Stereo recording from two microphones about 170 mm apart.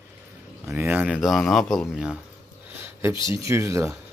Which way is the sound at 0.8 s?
10° right (ahead or behind).